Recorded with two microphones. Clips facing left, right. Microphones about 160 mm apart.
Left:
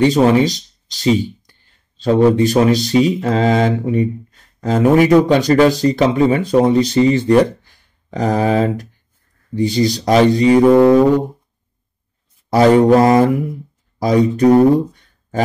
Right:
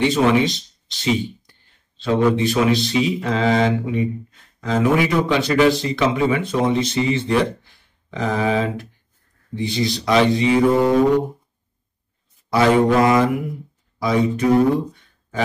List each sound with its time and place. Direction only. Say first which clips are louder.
0.0 s speech: left 5 dB; 40° left (ahead or behind)
10.7 s a sound: left 7 dB; 60° left (ahead or behind)
12.5 s speech: left 5 dB; 40° left (ahead or behind)